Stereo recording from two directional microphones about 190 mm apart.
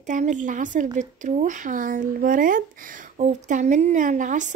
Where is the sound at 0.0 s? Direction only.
40° right (ahead or behind).